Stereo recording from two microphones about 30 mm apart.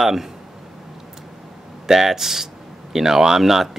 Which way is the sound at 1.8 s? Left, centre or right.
Centre.